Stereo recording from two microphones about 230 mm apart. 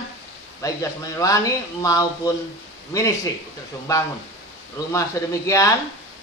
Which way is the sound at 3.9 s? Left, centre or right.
Centre.